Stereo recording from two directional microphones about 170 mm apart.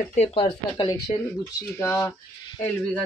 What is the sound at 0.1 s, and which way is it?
Speech, 40° left (ahead or behind).